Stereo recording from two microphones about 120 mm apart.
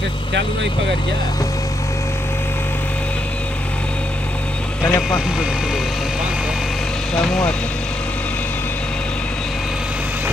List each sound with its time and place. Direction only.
4.8 s speech: 25° left (ahead or behind)
7.2 s speech: 5° left (ahead or behind)